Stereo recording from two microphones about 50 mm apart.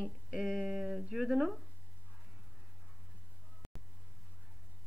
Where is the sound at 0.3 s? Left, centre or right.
Centre.